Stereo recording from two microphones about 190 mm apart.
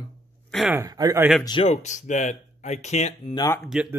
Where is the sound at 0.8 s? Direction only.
20° right (ahead or behind).